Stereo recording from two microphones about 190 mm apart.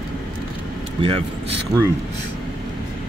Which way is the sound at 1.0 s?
30° right (ahead or behind).